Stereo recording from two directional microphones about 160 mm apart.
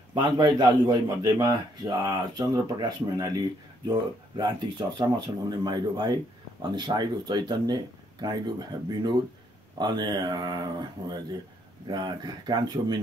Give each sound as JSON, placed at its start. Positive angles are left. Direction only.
{"t": 0.1, "sound": "a man's voice", "side_deg": -25}